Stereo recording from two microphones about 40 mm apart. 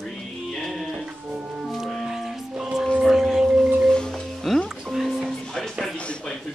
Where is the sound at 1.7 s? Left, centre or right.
Centre.